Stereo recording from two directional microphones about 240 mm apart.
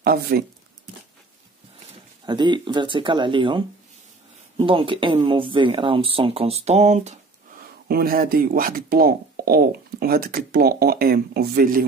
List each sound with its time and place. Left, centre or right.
0.0 s speech: right
1.9 s speech: centre; by 11.8 s right